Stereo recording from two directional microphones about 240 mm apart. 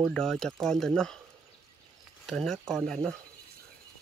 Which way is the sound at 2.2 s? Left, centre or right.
Centre.